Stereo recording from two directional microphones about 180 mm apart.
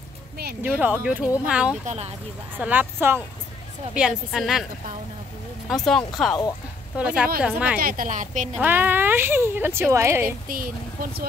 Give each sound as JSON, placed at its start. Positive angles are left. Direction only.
{"t": 0.6, "sound": "speech", "side_deg": -10}
{"t": 1.9, "sound": "speech", "side_deg": -35}
{"t": 2.6, "sound": "speech", "side_deg": -10}
{"t": 4.3, "sound": "speech", "side_deg": 0}
{"t": 5.7, "sound": "speech", "side_deg": 0}
{"t": 7.8, "sound": "speech", "side_deg": -45}
{"t": 8.5, "sound": "speech", "side_deg": -10}
{"t": 10.5, "sound": "speech", "side_deg": -50}